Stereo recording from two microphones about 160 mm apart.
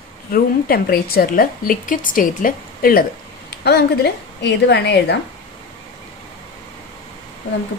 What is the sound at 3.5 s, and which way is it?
Speech, 90° left.